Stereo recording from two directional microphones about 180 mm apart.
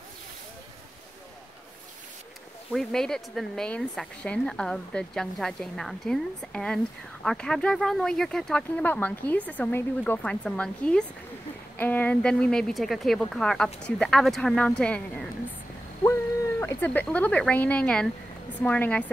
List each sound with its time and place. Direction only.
2.7 s a woman's voice: centre (ahead or behind)